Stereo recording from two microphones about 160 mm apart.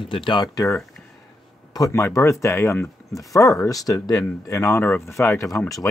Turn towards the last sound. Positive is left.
turn(degrees=20)  # may be behind; listen again after turning